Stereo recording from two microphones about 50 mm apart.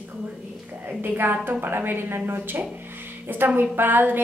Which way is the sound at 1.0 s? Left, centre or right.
Right.